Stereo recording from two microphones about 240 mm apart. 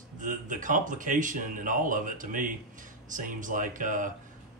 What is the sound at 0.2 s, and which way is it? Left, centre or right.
Speech, right.